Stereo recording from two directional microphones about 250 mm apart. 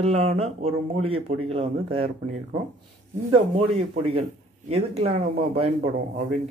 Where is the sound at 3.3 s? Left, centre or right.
Right.